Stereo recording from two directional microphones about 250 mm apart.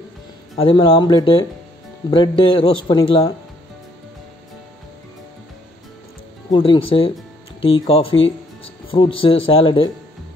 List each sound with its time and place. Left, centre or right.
0.6 s speech: left
6.5 s speech: centre